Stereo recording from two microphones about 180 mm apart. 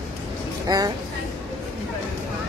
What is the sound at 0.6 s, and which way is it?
Speech, 20° right (ahead or behind).